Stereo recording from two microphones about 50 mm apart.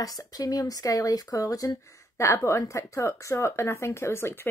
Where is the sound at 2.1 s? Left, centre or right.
Left.